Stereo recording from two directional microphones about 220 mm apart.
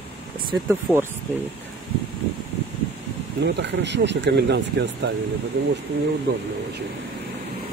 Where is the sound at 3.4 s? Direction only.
50° right (ahead or behind).